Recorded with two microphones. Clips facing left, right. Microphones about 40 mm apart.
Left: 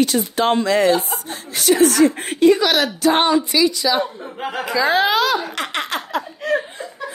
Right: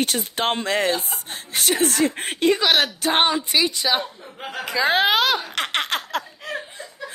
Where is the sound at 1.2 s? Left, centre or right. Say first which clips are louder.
Left 5 dB; right.